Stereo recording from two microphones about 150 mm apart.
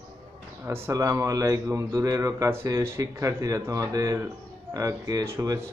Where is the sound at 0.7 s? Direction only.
20° right (ahead or behind).